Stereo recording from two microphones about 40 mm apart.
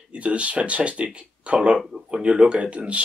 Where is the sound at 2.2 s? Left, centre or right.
Right.